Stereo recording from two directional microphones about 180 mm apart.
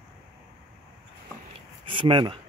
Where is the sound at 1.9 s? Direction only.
30° right (ahead or behind).